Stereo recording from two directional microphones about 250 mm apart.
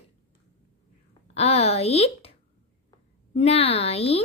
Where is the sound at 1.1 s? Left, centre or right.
Left.